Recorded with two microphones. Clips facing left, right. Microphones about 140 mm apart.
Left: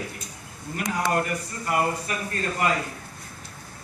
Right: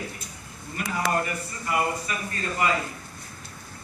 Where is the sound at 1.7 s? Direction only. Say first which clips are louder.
Left 2 dB; 50° left (ahead or behind).